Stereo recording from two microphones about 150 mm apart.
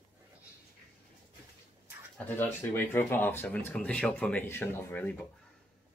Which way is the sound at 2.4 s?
15° left (ahead or behind).